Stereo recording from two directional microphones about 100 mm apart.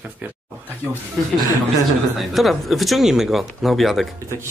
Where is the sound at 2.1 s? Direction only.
Centre (ahead or behind).